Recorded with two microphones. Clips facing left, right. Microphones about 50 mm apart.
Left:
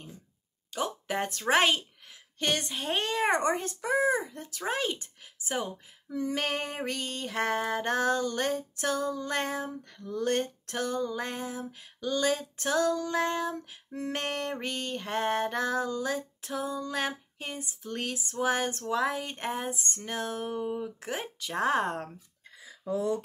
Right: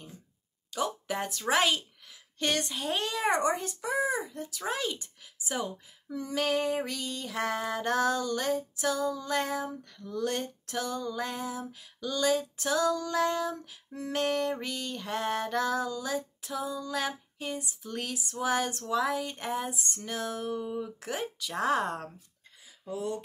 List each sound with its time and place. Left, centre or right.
0.7 s a sound: left
1.4 s a child's voice: left
3.4 s female singing: left
4.6 s speech: left
6.1 s female singing: left
10.2 s female singing: left
20.0 s speech: left